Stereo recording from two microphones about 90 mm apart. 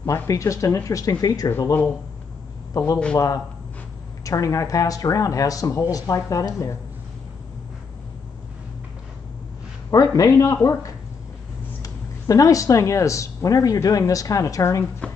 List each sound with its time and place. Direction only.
0.0 s speech: 40° left (ahead or behind)
2.8 s speech: 40° left (ahead or behind)
9.8 s speech: 40° left (ahead or behind)